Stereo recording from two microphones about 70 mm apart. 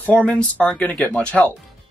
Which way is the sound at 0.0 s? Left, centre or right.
Centre.